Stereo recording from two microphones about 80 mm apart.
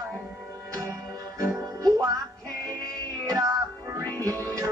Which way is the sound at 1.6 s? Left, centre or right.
Right.